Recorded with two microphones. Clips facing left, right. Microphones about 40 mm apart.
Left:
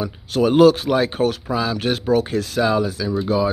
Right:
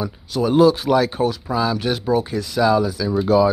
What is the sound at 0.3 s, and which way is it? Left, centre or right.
Speech, left.